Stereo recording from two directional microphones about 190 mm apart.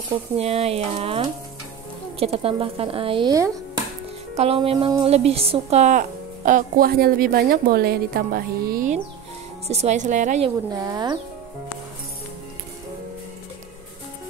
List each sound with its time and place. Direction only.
0.1 s a woman's voice: 35° right (ahead or behind)
4.4 s a woman's voice: 30° right (ahead or behind); by 8.9 s 50° right (ahead or behind)
9.7 s speech: 35° right (ahead or behind)
10.7 s a woman's voice: 20° right (ahead or behind)